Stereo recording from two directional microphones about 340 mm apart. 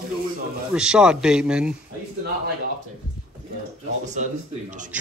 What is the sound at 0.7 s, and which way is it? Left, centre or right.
Speech, centre.